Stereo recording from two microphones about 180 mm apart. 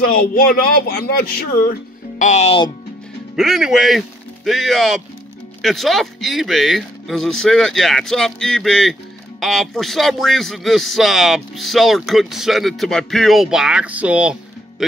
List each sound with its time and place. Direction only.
0.0 s speech: 50° left (ahead or behind); by 2.7 s 35° left (ahead or behind)
3.3 s speech: centre (ahead or behind)
14.8 s music: centre (ahead or behind)